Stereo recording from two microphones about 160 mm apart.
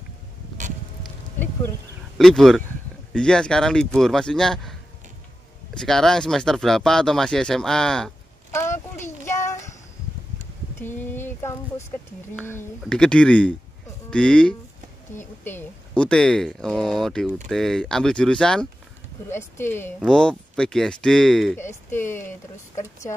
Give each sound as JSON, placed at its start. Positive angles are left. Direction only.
{"t": 2.1, "sound": "speech", "side_deg": 0}
{"t": 5.8, "sound": "speech", "side_deg": 5}
{"t": 8.5, "sound": "a sound", "side_deg": 15}
{"t": 9.2, "sound": "child singing", "side_deg": 15}
{"t": 10.8, "sound": "a sound", "side_deg": 15}
{"t": 12.8, "sound": "speech", "side_deg": 5}
{"t": 19.2, "sound": "speech", "side_deg": 15}
{"t": 20.0, "sound": "speech", "side_deg": 5}
{"t": 21.5, "sound": "speech", "side_deg": 15}